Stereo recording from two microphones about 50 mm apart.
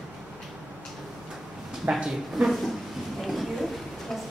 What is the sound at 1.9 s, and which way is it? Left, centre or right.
Speech, centre.